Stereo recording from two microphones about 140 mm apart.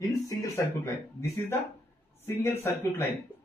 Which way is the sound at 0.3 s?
20° left (ahead or behind).